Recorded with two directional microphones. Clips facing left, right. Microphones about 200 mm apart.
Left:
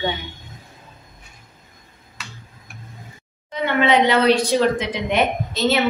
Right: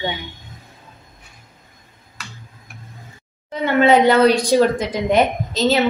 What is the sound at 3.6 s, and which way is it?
Speech, 45° right (ahead or behind).